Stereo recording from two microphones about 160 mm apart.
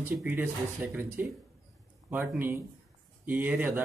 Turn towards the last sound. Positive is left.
turn(degrees=-10)  # may be behind; listen again after turning